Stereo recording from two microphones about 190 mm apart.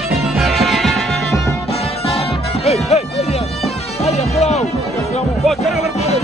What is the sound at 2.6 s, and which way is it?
Music, 35° left (ahead or behind).